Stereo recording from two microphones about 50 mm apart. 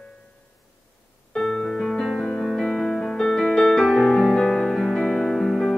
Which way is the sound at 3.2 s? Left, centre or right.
Centre.